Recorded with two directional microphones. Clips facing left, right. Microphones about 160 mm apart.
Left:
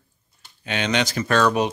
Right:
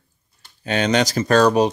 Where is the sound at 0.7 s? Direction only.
40° right (ahead or behind).